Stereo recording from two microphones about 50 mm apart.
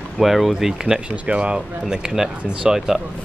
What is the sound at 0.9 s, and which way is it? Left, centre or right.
Speech, right.